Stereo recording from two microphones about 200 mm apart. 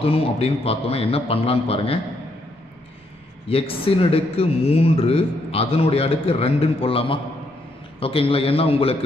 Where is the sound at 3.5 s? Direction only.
30° left (ahead or behind).